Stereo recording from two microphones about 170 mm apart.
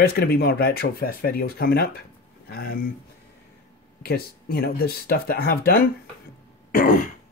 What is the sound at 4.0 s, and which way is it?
Speech, 65° left (ahead or behind).